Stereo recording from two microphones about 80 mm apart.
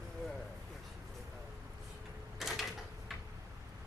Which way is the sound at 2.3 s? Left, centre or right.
Centre.